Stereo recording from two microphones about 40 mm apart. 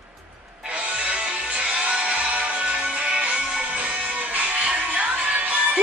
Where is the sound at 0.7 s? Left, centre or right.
Right.